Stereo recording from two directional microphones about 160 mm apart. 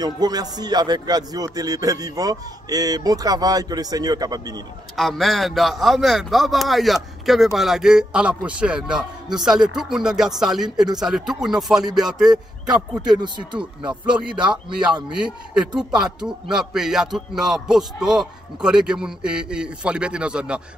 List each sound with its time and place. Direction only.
0.0 s a man's voice: 25° right (ahead or behind)
4.9 s speech: centre (ahead or behind)
13.2 s a man's voice: 30° right (ahead or behind)
14.0 s speech: 5° right (ahead or behind)